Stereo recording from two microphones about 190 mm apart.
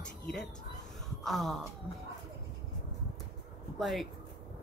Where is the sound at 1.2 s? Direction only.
Centre (ahead or behind).